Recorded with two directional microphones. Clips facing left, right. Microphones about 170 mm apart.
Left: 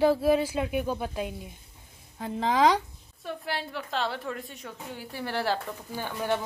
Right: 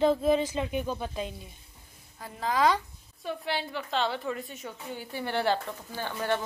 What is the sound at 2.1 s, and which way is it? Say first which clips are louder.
Speech: left 3 dB; 20° left (ahead or behind).